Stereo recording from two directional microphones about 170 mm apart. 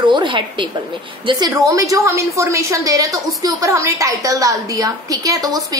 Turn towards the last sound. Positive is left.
turn(degrees=-20)  # may be behind; listen again after turning